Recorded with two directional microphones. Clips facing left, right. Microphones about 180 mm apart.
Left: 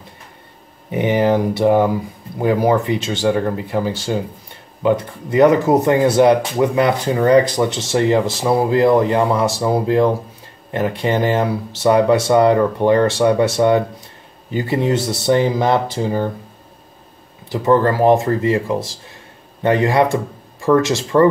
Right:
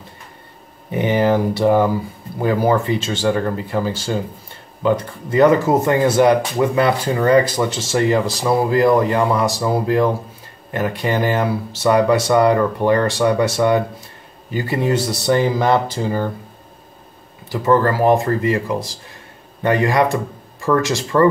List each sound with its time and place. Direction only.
0.9 s speech: 20° left (ahead or behind)
17.5 s speech: 20° left (ahead or behind)